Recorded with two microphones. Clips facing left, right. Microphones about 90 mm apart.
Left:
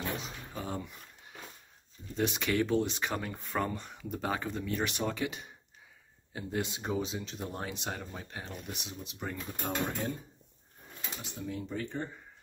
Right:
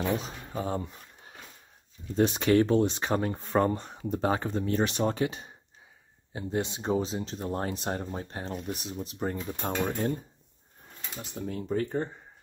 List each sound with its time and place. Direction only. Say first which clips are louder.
0.2 s speech: right 6 dB; 40° right (ahead or behind)
11.4 s speech: right 7 dB; 55° right (ahead or behind)